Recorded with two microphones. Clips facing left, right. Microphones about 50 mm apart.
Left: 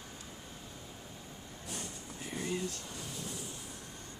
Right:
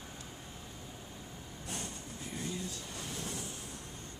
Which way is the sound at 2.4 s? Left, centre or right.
Left.